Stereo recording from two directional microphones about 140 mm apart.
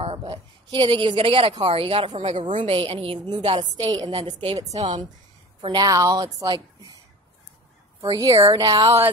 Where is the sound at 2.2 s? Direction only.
50° right (ahead or behind); by 4.1 s 30° right (ahead or behind).